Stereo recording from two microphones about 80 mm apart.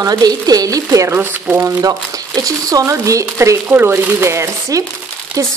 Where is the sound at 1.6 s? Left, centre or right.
Right.